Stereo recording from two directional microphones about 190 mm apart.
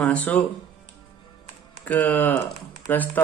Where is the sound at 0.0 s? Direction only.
10° left (ahead or behind).